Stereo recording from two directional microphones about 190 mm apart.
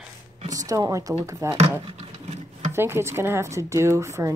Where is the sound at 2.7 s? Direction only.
10° right (ahead or behind).